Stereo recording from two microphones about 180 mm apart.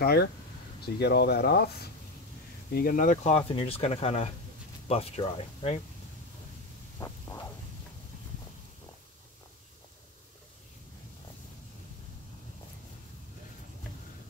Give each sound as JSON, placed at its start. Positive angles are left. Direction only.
{"t": 0.0, "sound": "speech", "side_deg": 60}
{"t": 3.3, "sound": "speech", "side_deg": 30}
{"t": 7.0, "sound": "a sound", "side_deg": 15}